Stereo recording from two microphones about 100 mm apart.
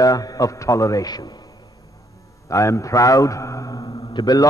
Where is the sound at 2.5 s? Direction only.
30° left (ahead or behind).